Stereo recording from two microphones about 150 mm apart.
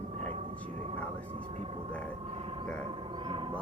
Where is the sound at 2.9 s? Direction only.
35° right (ahead or behind).